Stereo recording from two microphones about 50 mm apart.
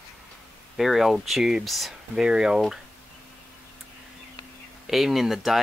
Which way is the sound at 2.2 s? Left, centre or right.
Centre.